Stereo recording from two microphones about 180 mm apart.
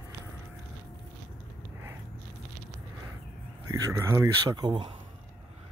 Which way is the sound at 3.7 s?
15° right (ahead or behind).